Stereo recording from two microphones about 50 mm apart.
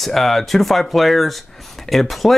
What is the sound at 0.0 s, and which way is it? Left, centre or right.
Speech, centre.